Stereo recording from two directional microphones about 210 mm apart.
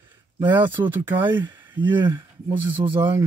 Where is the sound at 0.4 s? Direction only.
10° right (ahead or behind).